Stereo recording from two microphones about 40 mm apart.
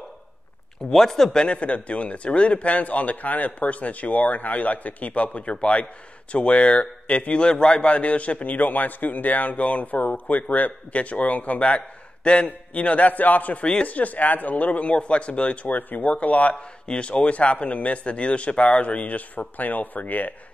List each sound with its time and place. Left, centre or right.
0.9 s speech: centre
1.4 s a man's voice: left